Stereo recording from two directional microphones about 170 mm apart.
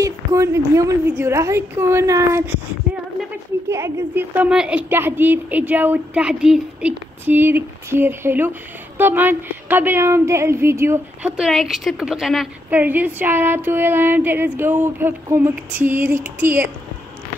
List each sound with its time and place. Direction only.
0.0 s a woman's voice: 20° right (ahead or behind)
3.7 s a woman's voice: 15° right (ahead or behind)
11.3 s a woman's voice: centre (ahead or behind)